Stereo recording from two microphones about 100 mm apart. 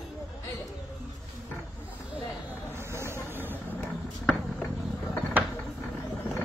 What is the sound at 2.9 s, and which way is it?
Vehicle, 25° right (ahead or behind).